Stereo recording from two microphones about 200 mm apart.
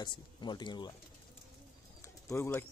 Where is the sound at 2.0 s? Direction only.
15° left (ahead or behind).